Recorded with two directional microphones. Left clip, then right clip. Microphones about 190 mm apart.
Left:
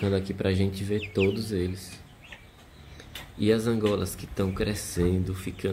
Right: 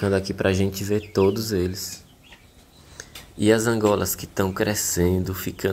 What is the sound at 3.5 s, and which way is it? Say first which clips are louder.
Speech: right 6 dB; 10° right (ahead or behind).